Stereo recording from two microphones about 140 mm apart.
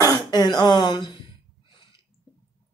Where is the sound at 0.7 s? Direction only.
30° left (ahead or behind).